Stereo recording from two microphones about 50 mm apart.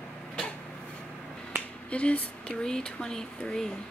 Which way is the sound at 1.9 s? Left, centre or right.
Left.